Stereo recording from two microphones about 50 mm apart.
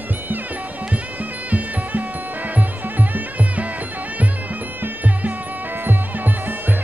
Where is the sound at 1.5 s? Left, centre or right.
Right.